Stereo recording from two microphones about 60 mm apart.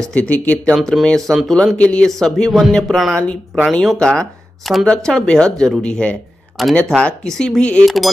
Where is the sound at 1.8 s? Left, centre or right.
Centre.